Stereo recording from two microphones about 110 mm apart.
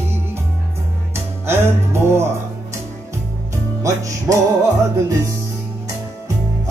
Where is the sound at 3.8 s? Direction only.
30° right (ahead or behind).